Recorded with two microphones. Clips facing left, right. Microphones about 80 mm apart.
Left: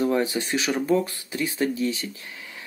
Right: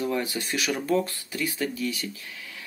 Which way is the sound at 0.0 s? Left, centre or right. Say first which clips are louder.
Left 5 dB; left.